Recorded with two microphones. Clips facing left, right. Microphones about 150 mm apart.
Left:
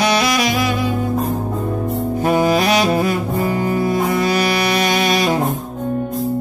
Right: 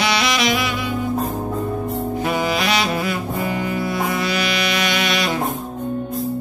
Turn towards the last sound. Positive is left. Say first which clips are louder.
# left 5 dB
turn(degrees=40)  # may be behind; listen again after turning